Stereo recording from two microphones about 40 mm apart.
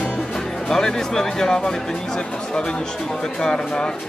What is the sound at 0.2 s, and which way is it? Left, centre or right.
Speech, centre.